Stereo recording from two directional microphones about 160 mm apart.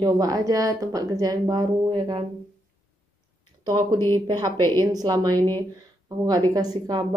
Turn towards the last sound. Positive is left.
turn(degrees=-25)  # may be behind; listen again after turning